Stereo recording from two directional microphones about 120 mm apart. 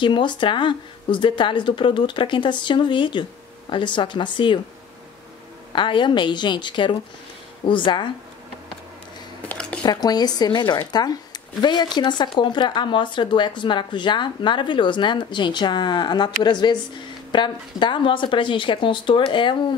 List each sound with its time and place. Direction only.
0.0 s speech: 40° left (ahead or behind)
5.7 s speech: 40° left (ahead or behind)
9.5 s speech: 10° left (ahead or behind)
9.8 s speech: 35° left (ahead or behind)